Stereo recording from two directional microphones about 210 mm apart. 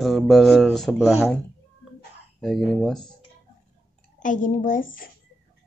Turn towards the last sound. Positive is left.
turn(degrees=40)  # may be behind; listen again after turning